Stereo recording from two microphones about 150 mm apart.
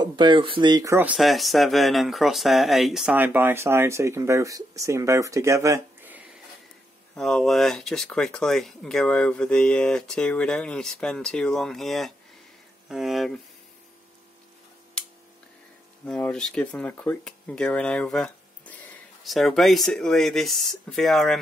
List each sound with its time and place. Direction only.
0.0 s speech: 30° right (ahead or behind)
0.9 s speech: 5° right (ahead or behind)
3.2 s speech: 15° right (ahead or behind)
7.2 s speech: centre (ahead or behind)
15.0 s a sound: 5° left (ahead or behind)
16.1 s speech: 5° left (ahead or behind)